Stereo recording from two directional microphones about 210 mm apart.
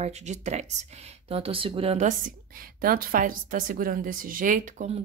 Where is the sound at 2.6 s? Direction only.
45° right (ahead or behind).